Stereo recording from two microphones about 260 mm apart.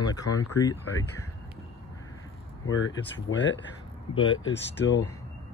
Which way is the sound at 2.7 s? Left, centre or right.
Left.